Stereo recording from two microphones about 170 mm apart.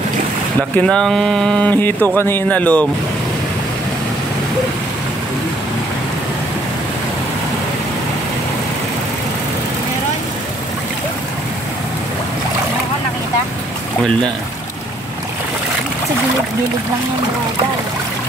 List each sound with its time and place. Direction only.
0.6 s speech: 5° left (ahead or behind)